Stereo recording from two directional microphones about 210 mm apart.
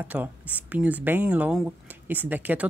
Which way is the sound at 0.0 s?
10° right (ahead or behind).